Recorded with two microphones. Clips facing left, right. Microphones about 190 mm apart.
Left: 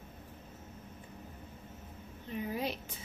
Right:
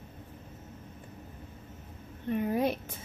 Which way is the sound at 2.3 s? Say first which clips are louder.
Right 8 dB; 55° right (ahead or behind).